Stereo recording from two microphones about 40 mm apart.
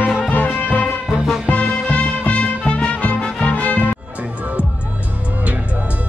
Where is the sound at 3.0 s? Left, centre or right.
Left.